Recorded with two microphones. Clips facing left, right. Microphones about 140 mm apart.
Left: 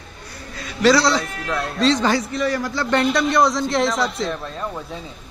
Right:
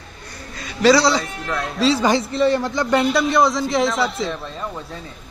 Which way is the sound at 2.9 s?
Centre (ahead or behind).